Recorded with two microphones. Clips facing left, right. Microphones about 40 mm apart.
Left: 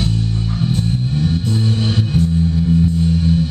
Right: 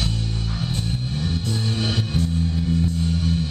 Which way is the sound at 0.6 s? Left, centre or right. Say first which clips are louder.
Left 9 dB; centre.